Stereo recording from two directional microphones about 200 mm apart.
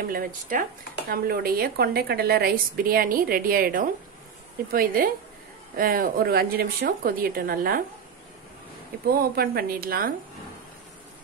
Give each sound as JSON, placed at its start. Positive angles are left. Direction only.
{"t": 0.1, "sound": "a woman's voice", "side_deg": -45}
{"t": 9.1, "sound": "a woman's voice", "side_deg": -50}